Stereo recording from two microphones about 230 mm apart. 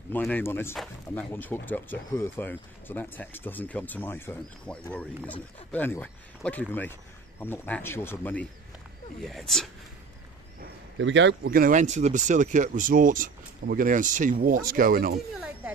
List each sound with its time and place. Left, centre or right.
0.1 s speech: centre
11.0 s speech: right